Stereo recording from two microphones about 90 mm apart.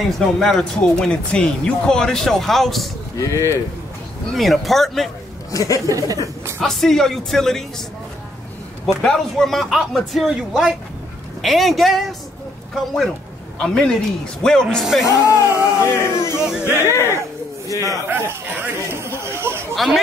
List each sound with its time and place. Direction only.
0.4 s speech: 5° left (ahead or behind)
3.2 s speech: 35° left (ahead or behind)
4.3 s speech: centre (ahead or behind)
5.5 s speech: 40° left (ahead or behind)
5.9 s speech: 40° right (ahead or behind)
6.6 s speech: 5° left (ahead or behind)
8.8 s speech: 5° left (ahead or behind)
13.6 s a man's voice: 10° left (ahead or behind)
15.2 s speech: 35° left (ahead or behind)
18.0 s chatter: 25° right (ahead or behind)
19.7 s speech: centre (ahead or behind)